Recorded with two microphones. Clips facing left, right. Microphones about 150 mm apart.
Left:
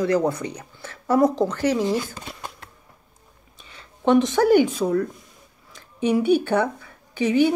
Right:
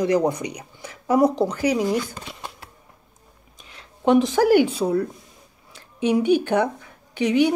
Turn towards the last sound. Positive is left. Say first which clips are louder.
# even
turn(degrees=-15)  # may be behind; listen again after turning